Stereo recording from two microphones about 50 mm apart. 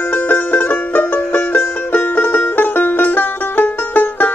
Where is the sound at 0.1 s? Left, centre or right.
Left.